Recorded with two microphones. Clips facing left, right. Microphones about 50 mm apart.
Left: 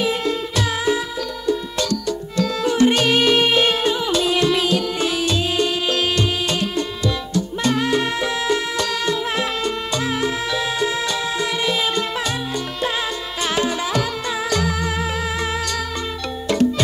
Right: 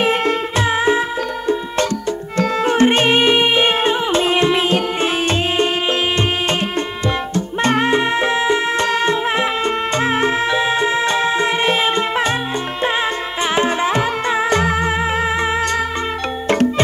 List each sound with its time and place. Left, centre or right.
0.0 s music: right
0.6 s music: right
2.6 s music: right
7.6 s music: right
13.6 s music: right
16.4 s music: right